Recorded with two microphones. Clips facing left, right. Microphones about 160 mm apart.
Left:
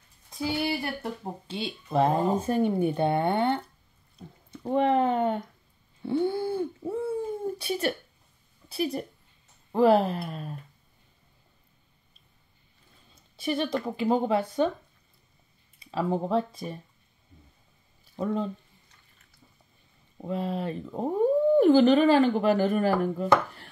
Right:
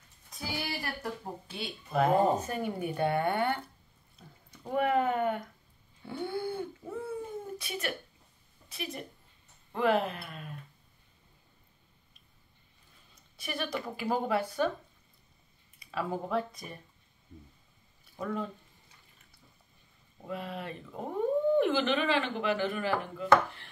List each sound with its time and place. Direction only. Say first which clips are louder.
0.3 s speech: left 9 dB; 25° left (ahead or behind)
6.0 s a sound: left 8 dB; 25° left (ahead or behind)
7.5 s a woman's voice: left 8 dB; 30° left (ahead or behind)
13.1 s a sound: left 10 dB; 25° left (ahead or behind)
13.8 s speech: left 6 dB; 25° left (ahead or behind)
15.8 s speech: left 6 dB; 25° left (ahead or behind)
18.1 s speech: left 6 dB; 30° left (ahead or behind)
20.2 s speech: left 8 dB; 30° left (ahead or behind)